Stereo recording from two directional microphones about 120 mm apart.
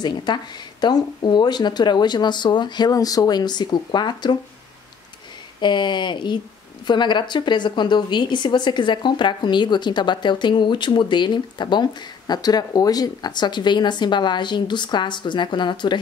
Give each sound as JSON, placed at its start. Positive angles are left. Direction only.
{"t": 0.0, "sound": "a woman's voice", "side_deg": 35}
{"t": 5.6, "sound": "a woman's voice", "side_deg": 40}